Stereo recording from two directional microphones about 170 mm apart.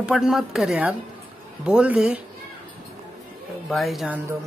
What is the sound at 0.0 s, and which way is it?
Speech, 5° right (ahead or behind).